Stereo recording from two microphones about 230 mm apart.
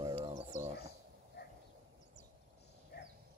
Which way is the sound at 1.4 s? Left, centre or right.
Left.